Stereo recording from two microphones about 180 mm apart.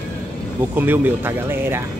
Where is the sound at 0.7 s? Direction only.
10° right (ahead or behind).